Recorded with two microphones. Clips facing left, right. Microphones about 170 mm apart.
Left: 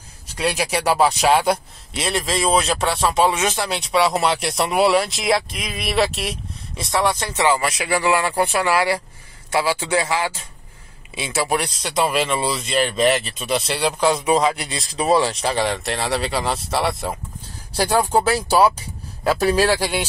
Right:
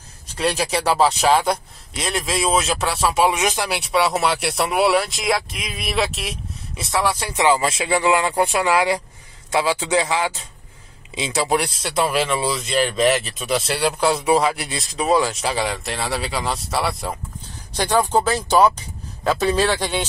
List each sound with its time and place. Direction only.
0.4 s speech: 10° left (ahead or behind); by 3.8 s 10° right (ahead or behind)
3.9 s a man's voice: centre (ahead or behind)
12.2 s speech: centre (ahead or behind)
15.0 s speech: 30° left (ahead or behind)
15.3 s speech: centre (ahead or behind)